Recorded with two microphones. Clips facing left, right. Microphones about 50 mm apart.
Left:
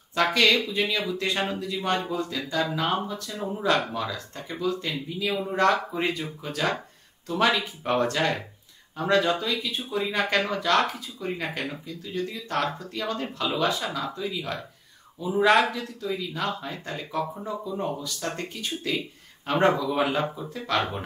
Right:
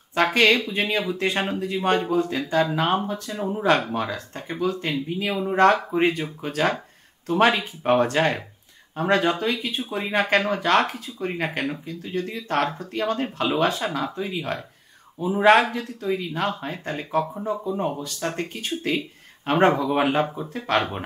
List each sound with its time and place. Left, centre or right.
0.1 s speech: right